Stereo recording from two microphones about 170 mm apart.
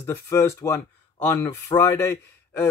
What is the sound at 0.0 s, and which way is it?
Speech, 15° left (ahead or behind).